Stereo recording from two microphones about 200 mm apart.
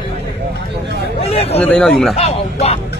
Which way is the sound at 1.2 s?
30° left (ahead or behind).